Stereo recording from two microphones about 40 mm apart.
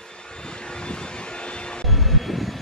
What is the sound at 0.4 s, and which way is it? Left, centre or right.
Vehicle, left.